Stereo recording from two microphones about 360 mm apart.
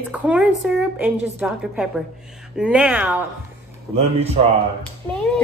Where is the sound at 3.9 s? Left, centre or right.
Centre.